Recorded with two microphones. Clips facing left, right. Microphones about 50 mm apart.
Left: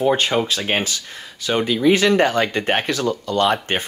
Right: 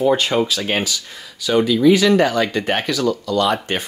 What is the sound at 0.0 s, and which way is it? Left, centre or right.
Speech, left.